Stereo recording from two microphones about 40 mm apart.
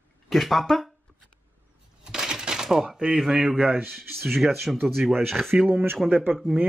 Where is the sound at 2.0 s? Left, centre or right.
Centre.